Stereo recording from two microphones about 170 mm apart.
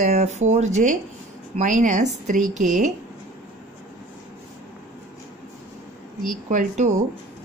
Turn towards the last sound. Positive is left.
turn(degrees=-50)  # may be behind; listen again after turning